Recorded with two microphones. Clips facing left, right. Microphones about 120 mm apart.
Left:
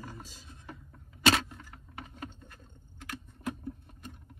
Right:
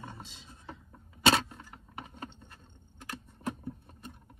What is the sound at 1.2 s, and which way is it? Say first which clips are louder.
Keys jangling: right 1 dB; 30° right (ahead or behind).